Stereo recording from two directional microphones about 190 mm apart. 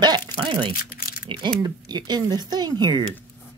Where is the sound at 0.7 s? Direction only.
50° left (ahead or behind).